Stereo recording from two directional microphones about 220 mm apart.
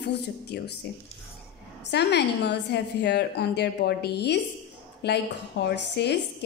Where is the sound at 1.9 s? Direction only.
50° left (ahead or behind).